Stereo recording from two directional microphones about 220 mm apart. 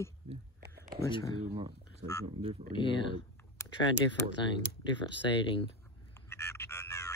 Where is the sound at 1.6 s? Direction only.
25° right (ahead or behind).